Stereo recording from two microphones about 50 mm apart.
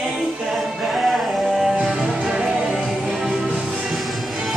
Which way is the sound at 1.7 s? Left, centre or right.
Centre.